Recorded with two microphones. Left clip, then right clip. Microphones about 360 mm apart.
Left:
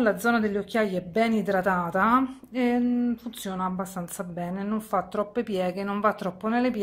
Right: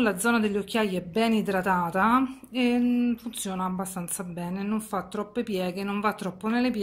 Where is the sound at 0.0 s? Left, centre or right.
Centre.